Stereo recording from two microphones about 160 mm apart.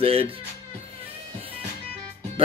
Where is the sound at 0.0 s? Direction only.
35° right (ahead or behind).